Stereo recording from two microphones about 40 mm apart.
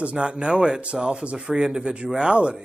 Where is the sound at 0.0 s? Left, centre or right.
Right.